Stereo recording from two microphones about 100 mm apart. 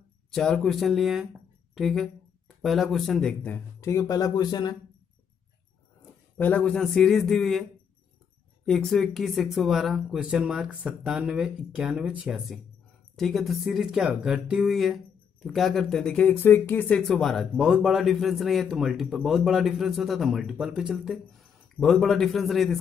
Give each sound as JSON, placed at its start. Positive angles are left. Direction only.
{"t": 0.3, "sound": "a man's voice", "side_deg": 5}
{"t": 3.4, "sound": "speech", "side_deg": 25}
{"t": 6.3, "sound": "a man's voice", "side_deg": 15}
{"t": 8.6, "sound": "a man's voice", "side_deg": 5}
{"t": 12.3, "sound": "a man's voice", "side_deg": -5}
{"t": 17.0, "sound": "a man's voice", "side_deg": 5}